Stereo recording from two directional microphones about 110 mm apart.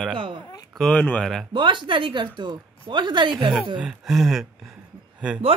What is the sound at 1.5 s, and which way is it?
Speech, 45° right (ahead or behind).